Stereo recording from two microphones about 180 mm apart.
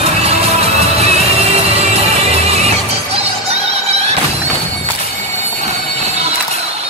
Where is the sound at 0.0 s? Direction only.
35° right (ahead or behind).